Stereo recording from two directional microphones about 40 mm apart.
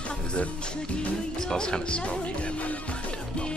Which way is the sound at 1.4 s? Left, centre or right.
Centre.